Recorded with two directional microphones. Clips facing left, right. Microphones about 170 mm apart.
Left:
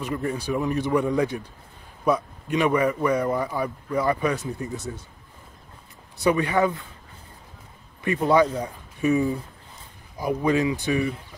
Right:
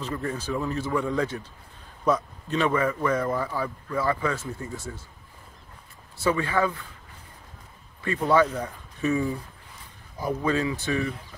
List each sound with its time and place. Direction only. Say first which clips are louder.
0.0 s speech: left 3 dB; 15° left (ahead or behind)
6.1 s speech: left 3 dB; 20° left (ahead or behind)
8.0 s speech: left 2 dB; 20° left (ahead or behind)